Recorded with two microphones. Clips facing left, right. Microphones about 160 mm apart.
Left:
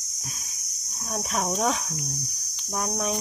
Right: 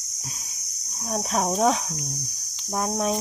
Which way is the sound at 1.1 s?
30° right (ahead or behind).